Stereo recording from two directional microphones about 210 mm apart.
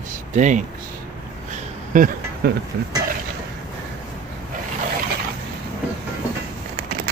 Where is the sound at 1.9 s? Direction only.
40° right (ahead or behind).